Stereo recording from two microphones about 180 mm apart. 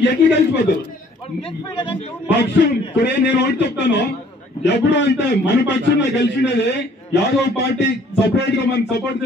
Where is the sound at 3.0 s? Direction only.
70° left (ahead or behind).